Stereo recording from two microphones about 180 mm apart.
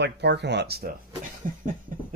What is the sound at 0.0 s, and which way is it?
Speech, 70° right (ahead or behind).